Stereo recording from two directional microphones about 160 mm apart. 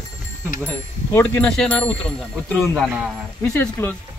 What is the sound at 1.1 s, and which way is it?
Speech, 10° left (ahead or behind).